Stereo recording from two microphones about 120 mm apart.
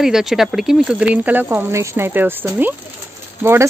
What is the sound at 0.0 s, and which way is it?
Speech, 5° right (ahead or behind).